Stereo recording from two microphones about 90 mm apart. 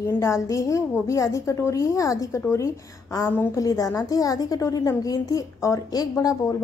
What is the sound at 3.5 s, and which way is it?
A woman's voice, 35° left (ahead or behind).